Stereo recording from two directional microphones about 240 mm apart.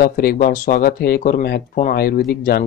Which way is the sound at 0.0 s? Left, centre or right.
Left.